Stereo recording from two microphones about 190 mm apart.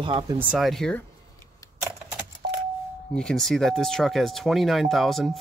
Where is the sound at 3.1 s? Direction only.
5° left (ahead or behind).